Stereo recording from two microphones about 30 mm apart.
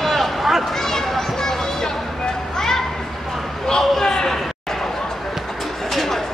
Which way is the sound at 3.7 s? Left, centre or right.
Left.